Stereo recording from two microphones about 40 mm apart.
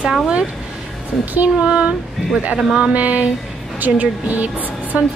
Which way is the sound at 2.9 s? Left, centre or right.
Right.